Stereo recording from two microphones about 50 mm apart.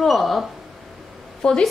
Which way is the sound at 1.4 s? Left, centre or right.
Centre.